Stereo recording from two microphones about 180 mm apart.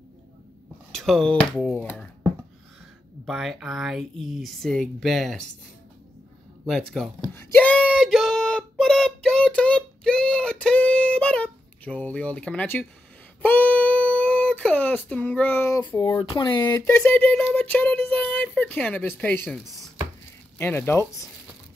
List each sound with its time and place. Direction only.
0.9 s speech: centre (ahead or behind)
3.3 s speech: centre (ahead or behind)
6.7 s speech: centre (ahead or behind)
7.9 s child singing: centre (ahead or behind)
13.4 s a sound: 10° left (ahead or behind); by 16.1 s 25° left (ahead or behind)
16.2 s speech: 25° left (ahead or behind)
16.9 s speech: 5° left (ahead or behind)
19.4 s speech: centre (ahead or behind)
20.5 s speech: 10° left (ahead or behind)